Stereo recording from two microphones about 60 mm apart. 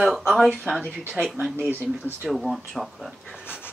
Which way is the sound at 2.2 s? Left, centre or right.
Centre.